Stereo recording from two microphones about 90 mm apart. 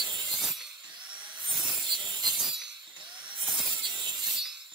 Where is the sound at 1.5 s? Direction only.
5° right (ahead or behind).